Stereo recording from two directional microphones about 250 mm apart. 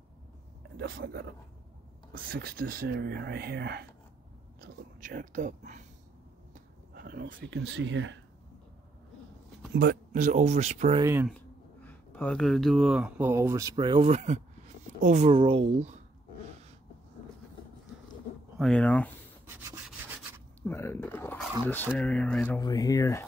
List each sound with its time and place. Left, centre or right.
0.7 s speech: right
2.3 s speech: right
9.8 s speech: right
11.0 s speech: centre
11.3 s speech: centre; by 16.0 s right
18.6 s speech: centre
19.4 s rub: centre
20.6 s speech: centre